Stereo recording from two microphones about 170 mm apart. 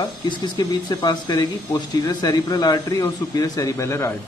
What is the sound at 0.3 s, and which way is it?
Speech, 25° left (ahead or behind).